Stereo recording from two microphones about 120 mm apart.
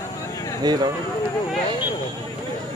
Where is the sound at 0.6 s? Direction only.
35° right (ahead or behind).